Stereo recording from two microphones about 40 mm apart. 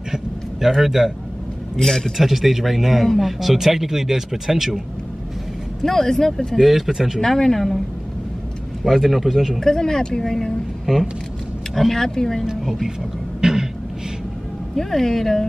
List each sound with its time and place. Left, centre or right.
0.7 s a man's voice: centre
1.8 s speech: centre
2.1 s speech: centre
5.8 s speech: centre
6.9 s a man's voice: centre
7.2 s speech: centre
8.8 s speech: centre
9.6 s speech: centre
10.9 s a man's voice: centre
11.7 s speech: centre
13.4 s a sound: centre
14.8 s speech: centre